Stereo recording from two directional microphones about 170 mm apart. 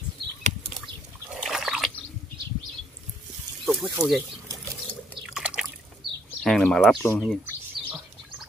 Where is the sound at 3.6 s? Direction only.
5° right (ahead or behind).